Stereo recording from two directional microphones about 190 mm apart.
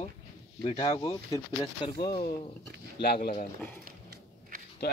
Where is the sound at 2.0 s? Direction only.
50° left (ahead or behind).